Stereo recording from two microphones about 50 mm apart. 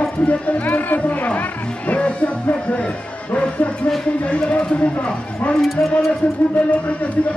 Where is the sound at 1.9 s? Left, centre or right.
Left.